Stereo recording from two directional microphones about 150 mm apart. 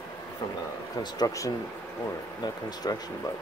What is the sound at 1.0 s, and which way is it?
Speech, 25° left (ahead or behind).